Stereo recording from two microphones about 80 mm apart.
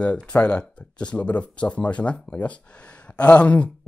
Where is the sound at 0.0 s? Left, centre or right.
Centre.